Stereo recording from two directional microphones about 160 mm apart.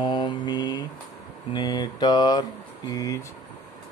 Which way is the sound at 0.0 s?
25° left (ahead or behind).